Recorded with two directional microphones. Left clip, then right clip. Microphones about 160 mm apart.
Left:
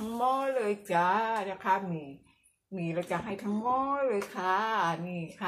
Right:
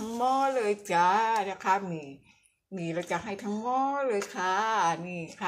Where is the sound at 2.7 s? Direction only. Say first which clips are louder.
Right 1 dB; 10° right (ahead or behind).